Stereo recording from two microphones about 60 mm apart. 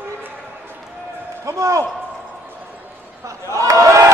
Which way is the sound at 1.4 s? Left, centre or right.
Right.